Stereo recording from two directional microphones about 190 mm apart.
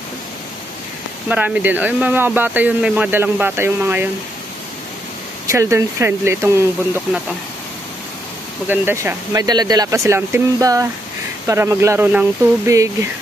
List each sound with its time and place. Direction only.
1.3 s speech: 10° right (ahead or behind)
5.5 s speech: 15° right (ahead or behind)
8.6 s speech: 10° right (ahead or behind)